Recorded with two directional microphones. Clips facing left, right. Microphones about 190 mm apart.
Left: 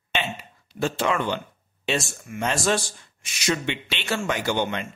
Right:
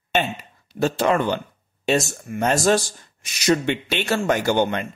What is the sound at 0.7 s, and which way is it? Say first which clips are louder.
Speech: right 5 dB; 40° right (ahead or behind).